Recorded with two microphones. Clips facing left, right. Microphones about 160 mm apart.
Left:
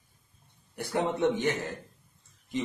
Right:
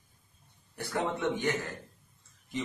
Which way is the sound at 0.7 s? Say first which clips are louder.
Left 4 dB; 20° left (ahead or behind).